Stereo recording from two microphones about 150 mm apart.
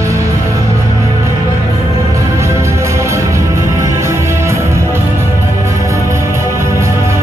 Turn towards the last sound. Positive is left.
turn(degrees=-20)  # may be behind; listen again after turning